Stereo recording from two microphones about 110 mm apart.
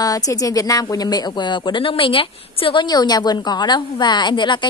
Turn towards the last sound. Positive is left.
turn(degrees=45)  # may be behind; listen again after turning